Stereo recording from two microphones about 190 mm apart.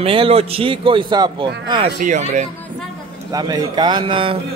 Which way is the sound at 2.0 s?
40° right (ahead or behind).